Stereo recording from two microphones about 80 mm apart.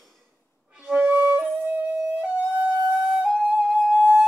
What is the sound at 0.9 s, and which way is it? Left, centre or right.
Flute, centre.